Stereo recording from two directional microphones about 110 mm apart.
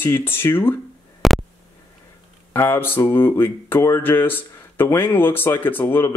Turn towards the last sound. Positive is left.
turn(degrees=20)  # may be behind; listen again after turning